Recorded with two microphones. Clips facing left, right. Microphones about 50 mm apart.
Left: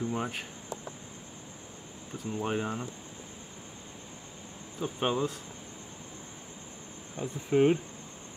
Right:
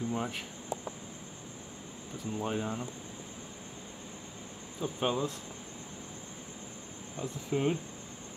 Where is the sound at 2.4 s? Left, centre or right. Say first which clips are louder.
Left 2 dB; left.